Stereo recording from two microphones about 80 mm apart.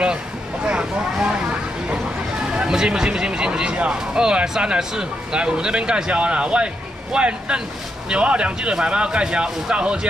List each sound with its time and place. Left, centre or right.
0.7 s vehicle: centre
2.5 s speech: centre